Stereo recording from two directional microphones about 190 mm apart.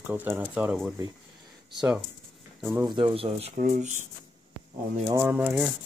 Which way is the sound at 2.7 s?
20° right (ahead or behind).